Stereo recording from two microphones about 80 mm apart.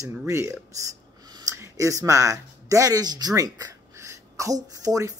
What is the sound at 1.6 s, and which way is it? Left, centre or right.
Speech, right.